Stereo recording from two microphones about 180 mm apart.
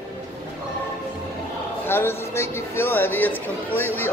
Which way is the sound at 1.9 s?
15° left (ahead or behind).